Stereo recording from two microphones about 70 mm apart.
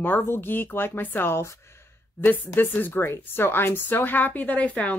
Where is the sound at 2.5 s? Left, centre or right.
Left.